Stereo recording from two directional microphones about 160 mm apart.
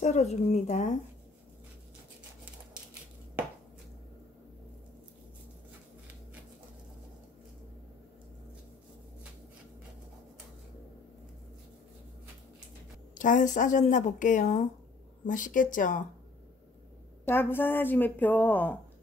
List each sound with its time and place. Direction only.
0.0 s speech: 45° left (ahead or behind)
13.1 s speech: 55° left (ahead or behind)
17.2 s a woman's voice: 15° left (ahead or behind)